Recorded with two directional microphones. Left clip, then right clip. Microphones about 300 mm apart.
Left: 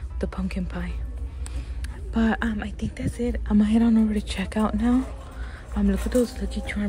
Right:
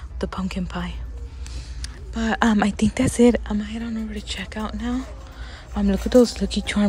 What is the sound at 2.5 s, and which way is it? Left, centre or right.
Speech, centre.